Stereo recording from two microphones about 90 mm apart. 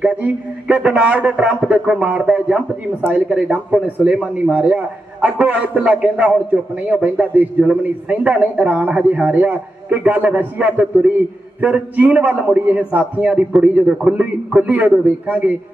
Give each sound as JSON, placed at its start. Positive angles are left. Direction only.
{"t": 0.0, "sound": "a man's voice", "side_deg": -15}